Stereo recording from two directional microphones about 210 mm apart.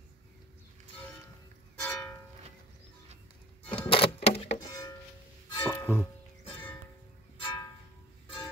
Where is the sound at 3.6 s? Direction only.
25° left (ahead or behind).